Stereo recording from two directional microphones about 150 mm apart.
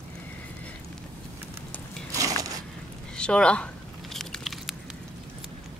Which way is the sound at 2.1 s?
20° right (ahead or behind).